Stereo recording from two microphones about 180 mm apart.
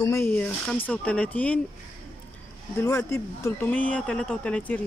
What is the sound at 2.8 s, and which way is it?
Speech, 15° left (ahead or behind).